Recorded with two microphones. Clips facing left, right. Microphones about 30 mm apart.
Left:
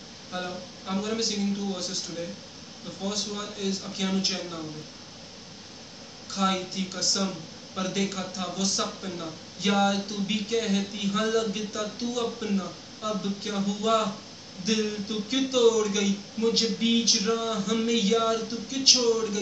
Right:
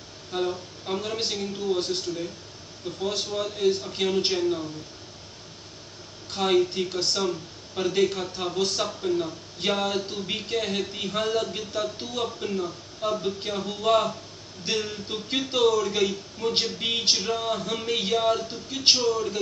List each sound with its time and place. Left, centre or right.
0.3 s a sound: centre
1.0 s a man's voice: right
6.3 s a man's voice: right
7.2 s speech: right
7.8 s a man's voice: right